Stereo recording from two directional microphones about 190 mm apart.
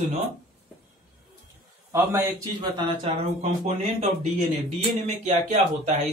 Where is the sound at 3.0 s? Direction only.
35° right (ahead or behind).